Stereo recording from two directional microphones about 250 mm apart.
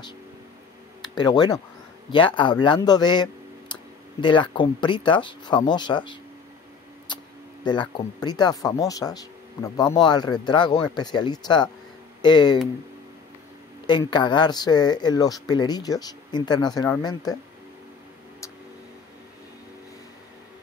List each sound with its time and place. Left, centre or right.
1.0 s speech: centre
7.1 s a sound: centre
7.6 s speech: centre
13.8 s speech: centre